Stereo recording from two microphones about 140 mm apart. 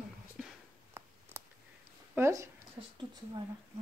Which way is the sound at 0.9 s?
20° right (ahead or behind).